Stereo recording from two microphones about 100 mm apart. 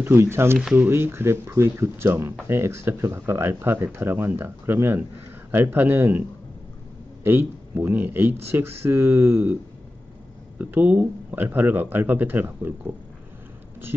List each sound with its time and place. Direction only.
0.0 s speech: 25° right (ahead or behind)
7.2 s speech: 20° right (ahead or behind)
10.6 s speech: 15° right (ahead or behind)